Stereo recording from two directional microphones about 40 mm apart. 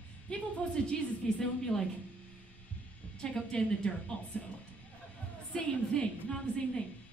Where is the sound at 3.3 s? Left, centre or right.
Left.